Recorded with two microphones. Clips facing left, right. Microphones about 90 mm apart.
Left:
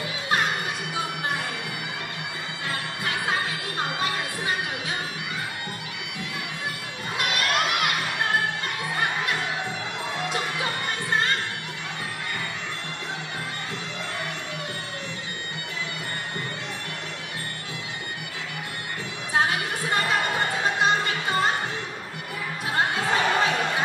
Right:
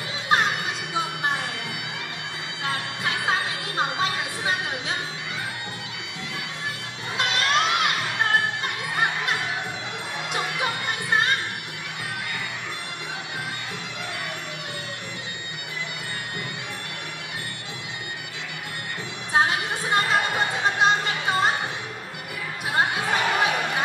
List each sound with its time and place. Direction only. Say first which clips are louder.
0.3 s children playing: right 3 dB; 20° right (ahead or behind)
0.9 s a sound: right 4 dB; 20° right (ahead or behind)
2.6 s music: right 3 dB; 20° right (ahead or behind)
7.2 s children shouting: right 2 dB; 25° right (ahead or behind)
10.3 s music: right 1 dB; 20° right (ahead or behind)
19.3 s music: right 2 dB; 20° right (ahead or behind)
22.8 s music: even; 15° right (ahead or behind)